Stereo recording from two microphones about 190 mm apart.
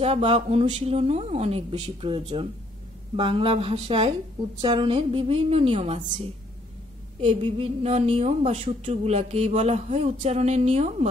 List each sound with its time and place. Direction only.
0.0 s a woman's voice: 30° right (ahead or behind)
7.2 s speech: 30° right (ahead or behind)